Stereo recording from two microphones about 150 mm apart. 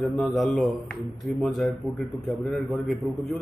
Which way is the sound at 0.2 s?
Centre (ahead or behind).